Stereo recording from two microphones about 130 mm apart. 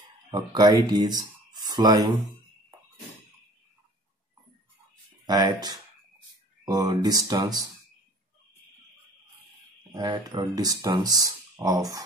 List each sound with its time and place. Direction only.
0.3 s speech: 30° right (ahead or behind)
5.2 s speech: 30° right (ahead or behind)
9.9 s speech: 30° right (ahead or behind)